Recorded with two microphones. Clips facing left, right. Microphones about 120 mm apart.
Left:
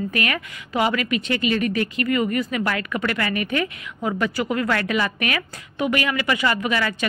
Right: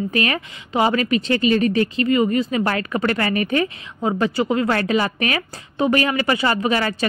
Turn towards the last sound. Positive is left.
turn(degrees=-35)  # may be behind; listen again after turning